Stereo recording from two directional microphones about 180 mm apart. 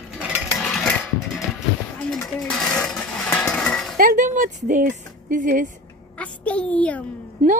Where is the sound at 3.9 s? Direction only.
50° right (ahead or behind).